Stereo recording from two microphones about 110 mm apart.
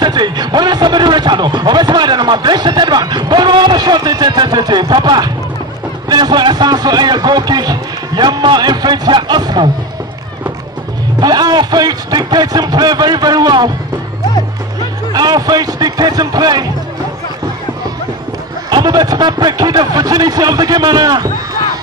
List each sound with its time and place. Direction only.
0.0 s a sound: 40° right (ahead or behind)
11.1 s a man's voice: 40° right (ahead or behind)
15.1 s a man's voice: 35° right (ahead or behind)
18.7 s a man's voice: 40° right (ahead or behind)